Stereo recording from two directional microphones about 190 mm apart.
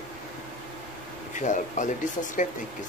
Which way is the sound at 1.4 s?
40° left (ahead or behind).